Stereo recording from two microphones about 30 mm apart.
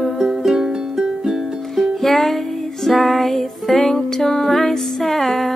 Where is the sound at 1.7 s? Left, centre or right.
Centre.